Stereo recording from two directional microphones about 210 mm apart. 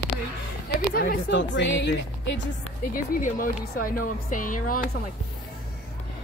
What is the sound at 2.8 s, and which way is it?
A woman's voice, 40° left (ahead or behind).